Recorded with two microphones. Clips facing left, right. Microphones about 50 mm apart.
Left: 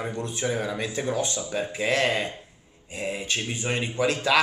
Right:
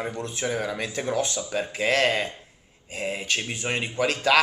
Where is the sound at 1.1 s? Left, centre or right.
Left.